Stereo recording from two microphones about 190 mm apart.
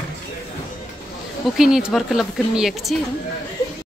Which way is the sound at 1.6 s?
5° right (ahead or behind).